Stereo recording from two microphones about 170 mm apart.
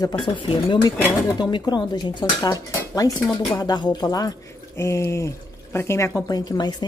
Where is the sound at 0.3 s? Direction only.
30° left (ahead or behind).